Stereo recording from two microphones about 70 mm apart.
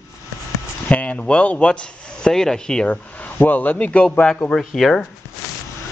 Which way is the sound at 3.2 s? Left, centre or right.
Left.